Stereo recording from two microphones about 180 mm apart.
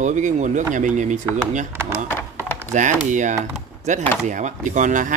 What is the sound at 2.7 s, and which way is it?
Speech, 45° right (ahead or behind).